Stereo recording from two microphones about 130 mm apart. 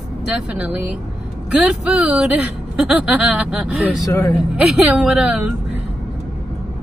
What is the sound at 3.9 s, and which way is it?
Mantra, 25° left (ahead or behind).